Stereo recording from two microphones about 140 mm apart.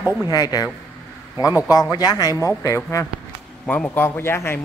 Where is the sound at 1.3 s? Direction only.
15° right (ahead or behind).